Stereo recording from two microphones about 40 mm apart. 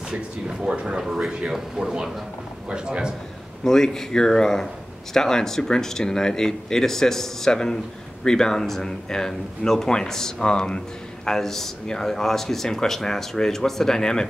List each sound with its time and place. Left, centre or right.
0.1 s a man's voice: centre
3.6 s speech: centre
10.4 s speech: left
11.2 s speech: centre